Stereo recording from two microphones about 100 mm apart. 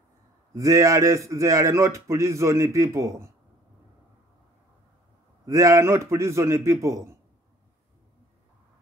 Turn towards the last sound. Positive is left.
turn(degrees=-30)  # may be behind; listen again after turning